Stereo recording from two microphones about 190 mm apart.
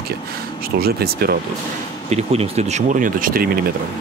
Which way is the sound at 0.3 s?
55° right (ahead or behind).